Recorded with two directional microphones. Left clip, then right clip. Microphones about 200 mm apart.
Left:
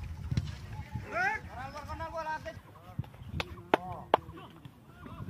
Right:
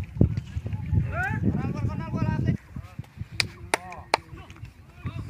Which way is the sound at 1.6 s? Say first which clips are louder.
Right 5 dB; 50° left (ahead or behind).